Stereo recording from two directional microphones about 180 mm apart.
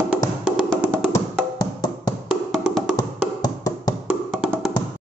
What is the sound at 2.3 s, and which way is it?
Music, centre (ahead or behind).